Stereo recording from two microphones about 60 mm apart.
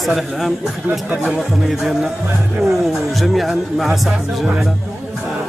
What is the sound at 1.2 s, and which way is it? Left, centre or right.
Music, centre.